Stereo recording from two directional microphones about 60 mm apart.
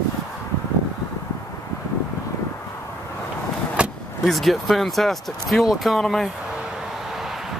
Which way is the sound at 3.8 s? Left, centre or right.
Right.